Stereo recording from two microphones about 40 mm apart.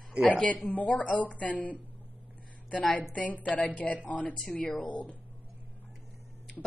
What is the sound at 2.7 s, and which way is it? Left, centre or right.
A woman's voice, left.